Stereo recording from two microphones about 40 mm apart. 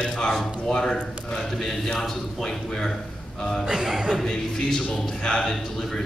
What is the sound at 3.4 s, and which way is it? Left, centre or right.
Speech, centre.